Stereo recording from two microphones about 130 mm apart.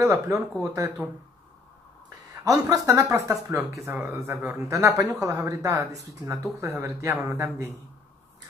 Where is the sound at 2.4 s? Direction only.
25° right (ahead or behind).